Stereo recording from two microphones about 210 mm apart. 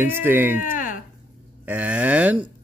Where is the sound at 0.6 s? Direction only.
40° left (ahead or behind).